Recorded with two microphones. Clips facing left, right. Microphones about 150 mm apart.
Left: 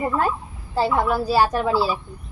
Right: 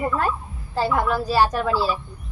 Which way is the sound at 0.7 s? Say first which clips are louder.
Left 1 dB; 10° left (ahead or behind).